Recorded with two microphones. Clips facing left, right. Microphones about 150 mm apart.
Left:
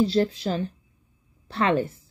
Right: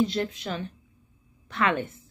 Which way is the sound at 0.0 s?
30° left (ahead or behind).